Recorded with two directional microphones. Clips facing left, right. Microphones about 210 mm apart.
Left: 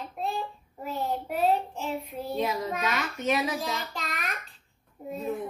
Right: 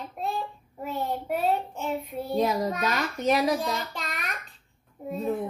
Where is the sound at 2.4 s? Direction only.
40° right (ahead or behind).